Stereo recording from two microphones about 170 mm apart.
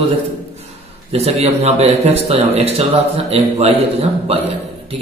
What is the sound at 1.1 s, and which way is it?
A man's voice, 40° right (ahead or behind).